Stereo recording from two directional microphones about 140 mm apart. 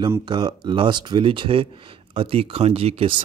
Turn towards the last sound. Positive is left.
turn(degrees=-45)  # may be behind; listen again after turning